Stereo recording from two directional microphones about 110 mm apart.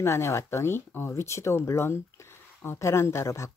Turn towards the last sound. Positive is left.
turn(degrees=25)  # may be behind; listen again after turning